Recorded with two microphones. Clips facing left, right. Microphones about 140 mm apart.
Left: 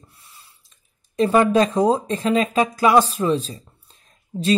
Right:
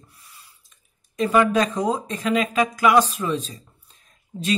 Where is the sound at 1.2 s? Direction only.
30° left (ahead or behind).